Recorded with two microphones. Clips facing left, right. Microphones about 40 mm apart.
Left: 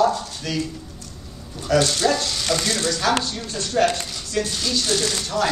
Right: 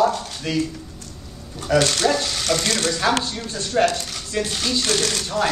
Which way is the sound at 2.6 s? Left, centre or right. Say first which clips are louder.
Right 1 dB; right.